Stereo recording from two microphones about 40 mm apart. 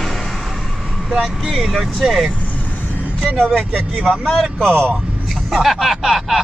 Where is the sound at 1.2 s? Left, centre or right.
Centre.